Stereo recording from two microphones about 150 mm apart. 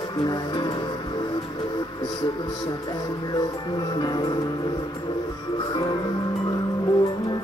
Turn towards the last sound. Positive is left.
turn(degrees=30)  # may be behind; listen again after turning